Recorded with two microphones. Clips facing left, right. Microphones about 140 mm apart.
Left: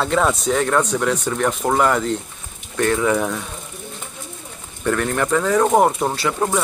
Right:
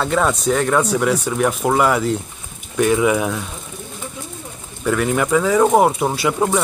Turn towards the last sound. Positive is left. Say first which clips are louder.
# right 2 dB
turn(degrees=-10)  # may be behind; listen again after turning